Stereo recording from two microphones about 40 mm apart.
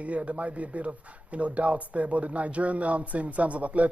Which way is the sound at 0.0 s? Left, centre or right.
Right.